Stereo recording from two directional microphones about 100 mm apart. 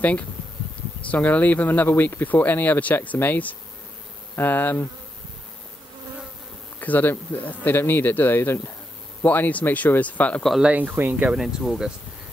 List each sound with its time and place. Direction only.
0.0 s speech: 15° left (ahead or behind)
6.8 s speech: 20° left (ahead or behind)
10.6 s speech: 15° right (ahead or behind)
11.3 s speech: 5° right (ahead or behind)